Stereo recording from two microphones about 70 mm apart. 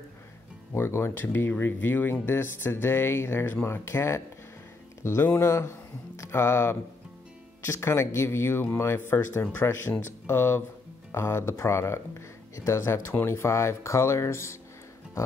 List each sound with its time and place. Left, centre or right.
0.7 s speech: left
5.2 s speech: left